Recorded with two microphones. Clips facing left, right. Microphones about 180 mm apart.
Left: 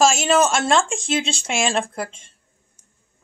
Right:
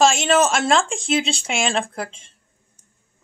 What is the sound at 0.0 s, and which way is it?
Speech, 5° left (ahead or behind).